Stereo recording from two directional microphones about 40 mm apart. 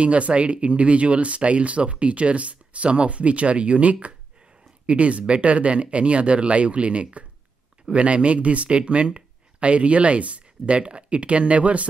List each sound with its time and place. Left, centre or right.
0.0 s speech: right